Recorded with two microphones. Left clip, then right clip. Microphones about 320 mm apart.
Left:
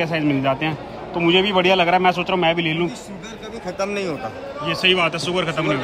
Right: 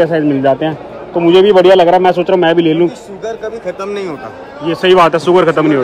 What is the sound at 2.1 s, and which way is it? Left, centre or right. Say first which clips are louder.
Speech: right 9 dB; centre.